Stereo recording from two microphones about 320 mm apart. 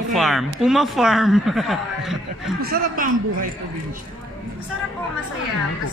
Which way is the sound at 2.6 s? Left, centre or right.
Right.